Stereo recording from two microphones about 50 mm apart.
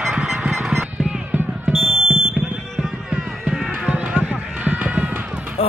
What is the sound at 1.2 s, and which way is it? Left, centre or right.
Music, right.